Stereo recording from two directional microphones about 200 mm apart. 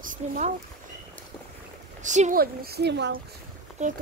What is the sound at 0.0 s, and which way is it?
Speech, 40° right (ahead or behind).